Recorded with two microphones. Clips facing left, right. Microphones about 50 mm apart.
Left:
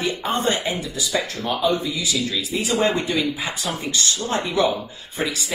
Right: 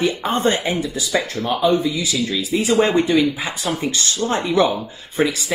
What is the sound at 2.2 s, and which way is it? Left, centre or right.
Speech, right.